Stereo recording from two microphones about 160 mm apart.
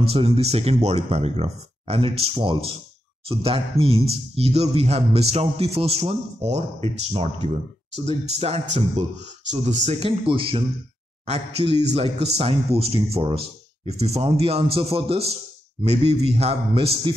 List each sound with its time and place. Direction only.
0.0 s speech: 35° right (ahead or behind)